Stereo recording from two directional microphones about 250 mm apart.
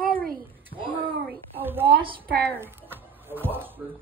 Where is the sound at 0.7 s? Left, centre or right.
Centre.